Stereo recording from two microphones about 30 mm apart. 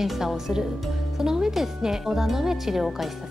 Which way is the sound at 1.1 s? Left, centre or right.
Centre.